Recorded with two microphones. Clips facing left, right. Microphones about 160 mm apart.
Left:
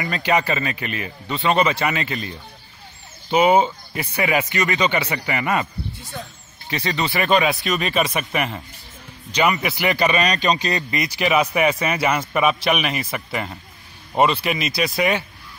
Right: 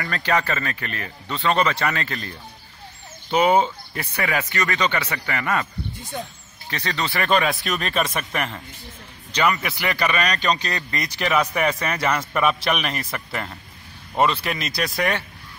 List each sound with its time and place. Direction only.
0.0 s a man's voice: 15° left (ahead or behind)
6.7 s a man's voice: 10° left (ahead or behind)